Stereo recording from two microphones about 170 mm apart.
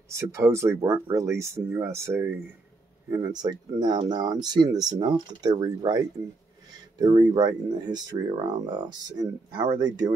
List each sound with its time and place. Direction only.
0.1 s speech: 20° right (ahead or behind)